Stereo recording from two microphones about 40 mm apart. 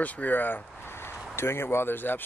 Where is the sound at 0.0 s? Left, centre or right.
Left.